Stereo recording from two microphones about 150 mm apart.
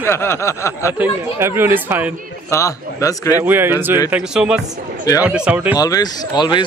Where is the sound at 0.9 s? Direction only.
15° right (ahead or behind).